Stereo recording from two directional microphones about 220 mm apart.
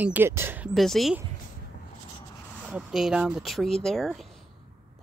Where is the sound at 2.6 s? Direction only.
5° right (ahead or behind).